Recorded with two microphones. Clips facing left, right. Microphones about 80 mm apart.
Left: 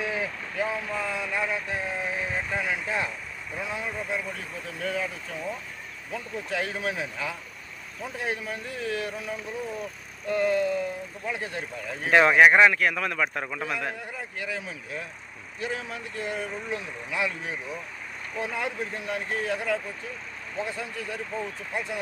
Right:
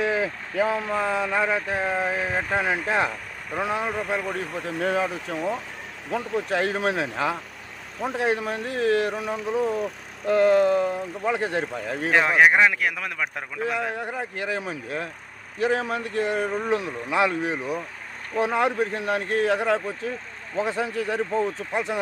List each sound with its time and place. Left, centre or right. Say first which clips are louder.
0.0 s speech: right 6 dB; right
0.7 s speech: right 6 dB; right
12.1 s speech: left 1 dB; centre
13.9 s speech: right 7 dB; right
20.6 s speech: right 9 dB; right